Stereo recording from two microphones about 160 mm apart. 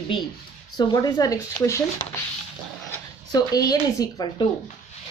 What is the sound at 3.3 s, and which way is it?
Speech, 25° left (ahead or behind).